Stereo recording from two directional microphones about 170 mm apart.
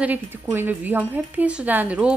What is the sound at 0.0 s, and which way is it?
A woman's voice, 10° right (ahead or behind).